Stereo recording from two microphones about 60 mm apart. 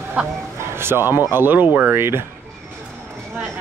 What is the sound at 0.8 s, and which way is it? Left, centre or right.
Speech, right.